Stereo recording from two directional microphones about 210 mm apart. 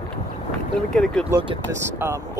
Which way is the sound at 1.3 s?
25° right (ahead or behind).